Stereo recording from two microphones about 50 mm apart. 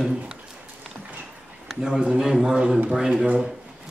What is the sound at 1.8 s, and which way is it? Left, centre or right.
A man's voice, centre.